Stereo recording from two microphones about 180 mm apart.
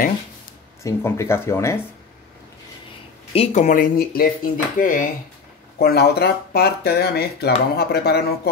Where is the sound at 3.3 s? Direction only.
35° left (ahead or behind).